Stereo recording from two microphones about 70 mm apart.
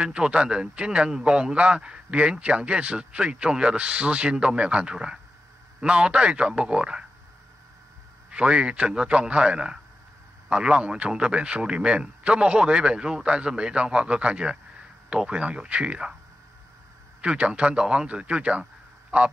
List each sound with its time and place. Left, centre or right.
0.0 s a man's voice: centre
8.3 s a man's voice: centre
17.2 s speech: centre